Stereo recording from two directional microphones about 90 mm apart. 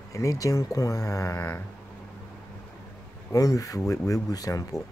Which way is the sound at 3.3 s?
40° left (ahead or behind).